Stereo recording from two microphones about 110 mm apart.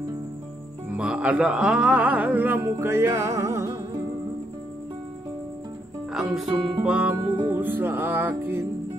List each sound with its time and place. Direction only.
0.9 s speech: 10° right (ahead or behind); by 4.0 s 25° right (ahead or behind)
6.1 s music: 5° right (ahead or behind); by 8.6 s 20° right (ahead or behind)